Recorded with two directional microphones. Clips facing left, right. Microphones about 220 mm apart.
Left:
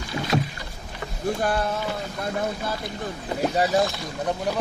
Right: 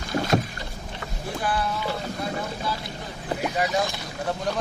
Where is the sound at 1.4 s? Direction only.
45° left (ahead or behind).